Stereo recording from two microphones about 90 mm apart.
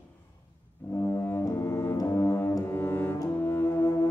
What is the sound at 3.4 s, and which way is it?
Brass instrument, 25° left (ahead or behind).